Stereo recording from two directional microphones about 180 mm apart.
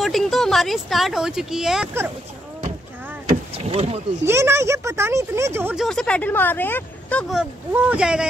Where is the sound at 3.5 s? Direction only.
35° right (ahead or behind).